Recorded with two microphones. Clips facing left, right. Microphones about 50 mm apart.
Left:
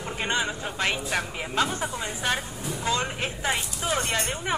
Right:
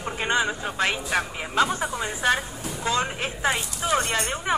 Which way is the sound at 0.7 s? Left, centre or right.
Centre.